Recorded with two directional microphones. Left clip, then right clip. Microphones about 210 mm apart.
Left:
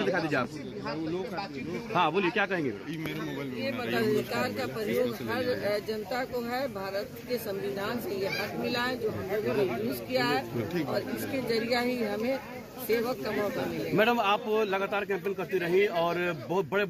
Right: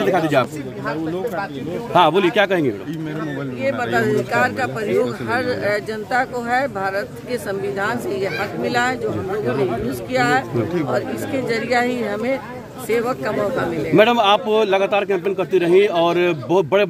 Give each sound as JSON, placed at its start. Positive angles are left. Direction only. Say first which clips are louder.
{"t": 0.0, "sound": "a man's voice", "louder": "right 12 dB", "side_deg": -60}
{"t": 2.0, "sound": "a man's voice", "louder": "right 12 dB", "side_deg": -60}
{"t": 3.6, "sound": "speech", "louder": "right 11 dB", "side_deg": -10}
{"t": 10.1, "sound": "speech", "louder": "right 11 dB", "side_deg": -5}
{"t": 13.9, "sound": "a man's voice", "louder": "right 12 dB", "side_deg": -50}